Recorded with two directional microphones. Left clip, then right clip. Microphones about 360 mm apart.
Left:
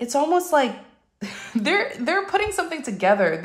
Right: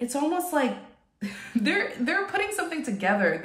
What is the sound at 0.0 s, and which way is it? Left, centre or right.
A woman's voice, centre.